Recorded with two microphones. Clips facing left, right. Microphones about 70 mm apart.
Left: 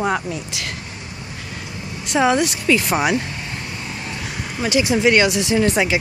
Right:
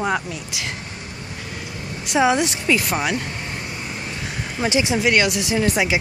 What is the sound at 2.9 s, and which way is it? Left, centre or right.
Speech, centre.